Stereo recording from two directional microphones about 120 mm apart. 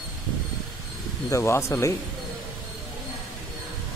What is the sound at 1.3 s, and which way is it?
Speech, 25° left (ahead or behind).